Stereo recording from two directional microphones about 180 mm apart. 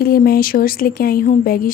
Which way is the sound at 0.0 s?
55° left (ahead or behind).